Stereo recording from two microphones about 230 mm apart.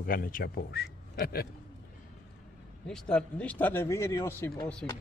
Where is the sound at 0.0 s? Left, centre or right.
Left.